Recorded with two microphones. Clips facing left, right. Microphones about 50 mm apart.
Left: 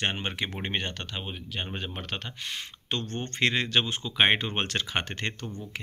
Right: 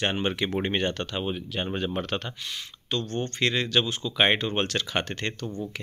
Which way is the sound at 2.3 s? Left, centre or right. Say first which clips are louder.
Even; left.